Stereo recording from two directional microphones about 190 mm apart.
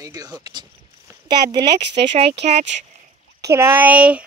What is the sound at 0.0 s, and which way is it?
Speech, 20° right (ahead or behind).